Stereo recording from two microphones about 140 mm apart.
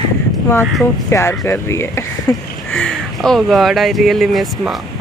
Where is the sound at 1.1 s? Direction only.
20° left (ahead or behind).